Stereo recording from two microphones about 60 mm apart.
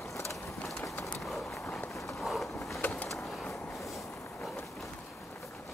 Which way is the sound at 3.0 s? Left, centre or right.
Centre.